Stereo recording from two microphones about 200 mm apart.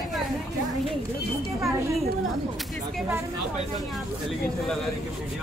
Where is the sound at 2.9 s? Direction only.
5° right (ahead or behind).